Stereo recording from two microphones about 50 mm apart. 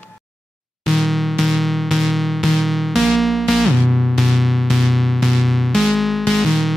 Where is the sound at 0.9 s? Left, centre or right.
Centre.